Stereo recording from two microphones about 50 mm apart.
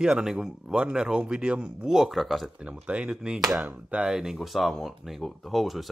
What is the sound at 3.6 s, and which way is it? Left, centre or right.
Speech, right.